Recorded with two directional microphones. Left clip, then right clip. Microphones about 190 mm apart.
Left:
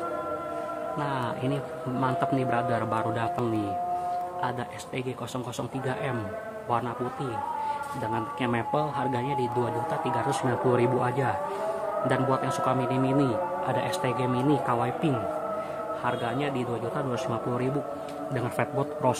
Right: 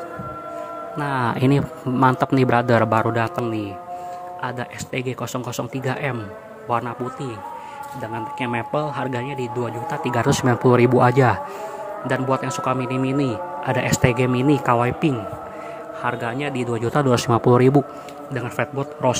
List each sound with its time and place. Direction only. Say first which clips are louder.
0.9 s speech: right 10 dB; 35° right (ahead or behind)
4.9 s a man's voice: right 8 dB; 25° right (ahead or behind)
8.1 s a man's voice: right 4 dB; 15° right (ahead or behind)
10.0 s speech: right 10 dB; 35° right (ahead or behind)
12.1 s a man's voice: right 6 dB; 20° right (ahead or behind); by 17.7 s 40° right (ahead or behind)
18.3 s a man's voice: right 4 dB; 15° right (ahead or behind)